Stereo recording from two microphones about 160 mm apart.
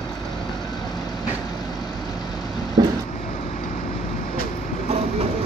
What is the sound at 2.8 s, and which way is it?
Vehicle, 25° right (ahead or behind).